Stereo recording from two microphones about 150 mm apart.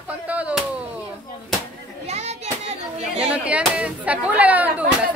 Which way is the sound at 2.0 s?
45° right (ahead or behind).